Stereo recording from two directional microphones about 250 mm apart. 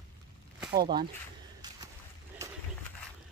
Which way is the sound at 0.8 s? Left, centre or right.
Right.